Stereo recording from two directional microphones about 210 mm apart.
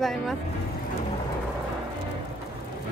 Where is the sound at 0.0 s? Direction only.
Centre (ahead or behind).